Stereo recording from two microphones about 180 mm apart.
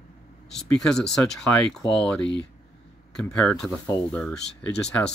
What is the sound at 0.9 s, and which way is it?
Speech, 5° left (ahead or behind).